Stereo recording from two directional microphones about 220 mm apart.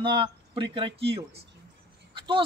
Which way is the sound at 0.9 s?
50° right (ahead or behind).